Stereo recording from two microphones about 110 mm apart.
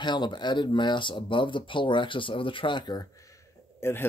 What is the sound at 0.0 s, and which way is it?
Speech, 45° left (ahead or behind).